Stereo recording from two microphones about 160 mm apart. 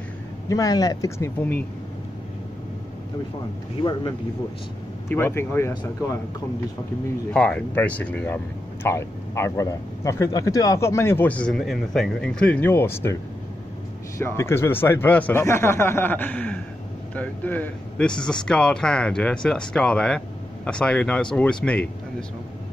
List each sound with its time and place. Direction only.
0.5 s speech: 20° left (ahead or behind)
5.1 s a man's voice: 15° left (ahead or behind)
7.3 s a man's voice: 10° left (ahead or behind)